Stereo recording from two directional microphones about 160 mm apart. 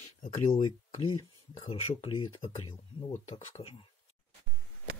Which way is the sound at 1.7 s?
35° left (ahead or behind).